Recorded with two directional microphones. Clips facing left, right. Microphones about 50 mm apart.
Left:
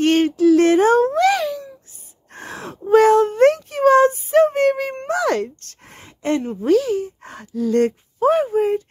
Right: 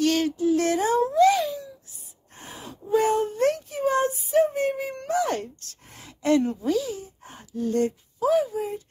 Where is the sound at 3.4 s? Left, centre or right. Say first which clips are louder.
Left 9 dB; left.